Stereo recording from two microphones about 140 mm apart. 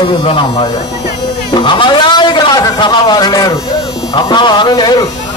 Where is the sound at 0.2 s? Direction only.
40° left (ahead or behind).